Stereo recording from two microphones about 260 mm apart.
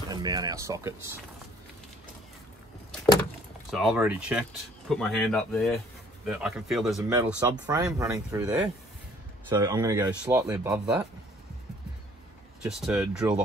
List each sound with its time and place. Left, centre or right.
0.1 s speech: centre
3.7 s speech: centre
12.6 s speech: centre